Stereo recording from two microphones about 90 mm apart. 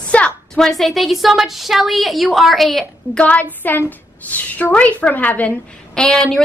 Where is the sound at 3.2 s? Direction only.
15° left (ahead or behind).